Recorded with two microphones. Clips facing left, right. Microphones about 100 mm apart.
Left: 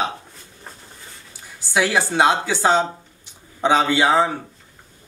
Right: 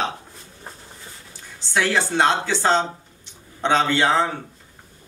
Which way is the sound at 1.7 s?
10° left (ahead or behind).